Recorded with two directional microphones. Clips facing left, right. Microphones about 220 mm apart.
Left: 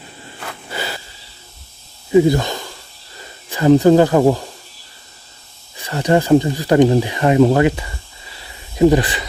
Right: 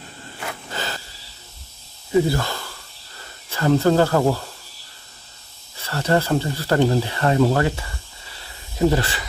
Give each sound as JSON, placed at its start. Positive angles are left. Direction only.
{"t": 0.7, "sound": "wheeze", "side_deg": 10}
{"t": 2.0, "sound": "a sound", "side_deg": 15}
{"t": 3.2, "sound": "speech", "side_deg": 15}
{"t": 5.8, "sound": "speech", "side_deg": 15}